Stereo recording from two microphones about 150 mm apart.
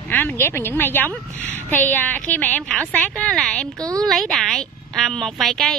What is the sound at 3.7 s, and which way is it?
Speech, 25° right (ahead or behind).